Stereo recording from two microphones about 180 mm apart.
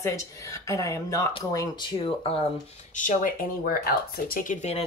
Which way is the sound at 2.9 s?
45° left (ahead or behind).